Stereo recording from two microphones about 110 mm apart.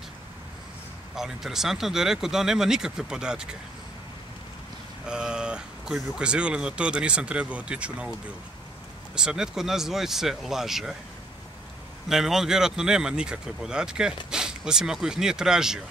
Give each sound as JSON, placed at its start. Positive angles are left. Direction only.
{"t": 1.1, "sound": "speech", "side_deg": -5}
{"t": 5.0, "sound": "speech", "side_deg": -5}
{"t": 9.1, "sound": "speech", "side_deg": -5}
{"t": 12.1, "sound": "speech", "side_deg": -5}